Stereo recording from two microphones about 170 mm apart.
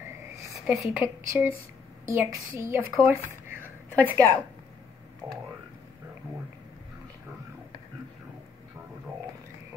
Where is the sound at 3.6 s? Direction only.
15° right (ahead or behind).